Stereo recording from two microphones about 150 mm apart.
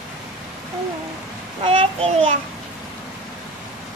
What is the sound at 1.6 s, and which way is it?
Speech, 40° right (ahead or behind).